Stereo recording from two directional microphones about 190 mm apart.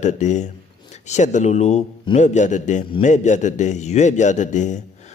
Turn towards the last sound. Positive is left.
turn(degrees=40)  # may be behind; listen again after turning